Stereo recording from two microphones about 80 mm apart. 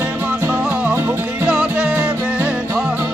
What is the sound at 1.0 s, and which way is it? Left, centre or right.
Music, right.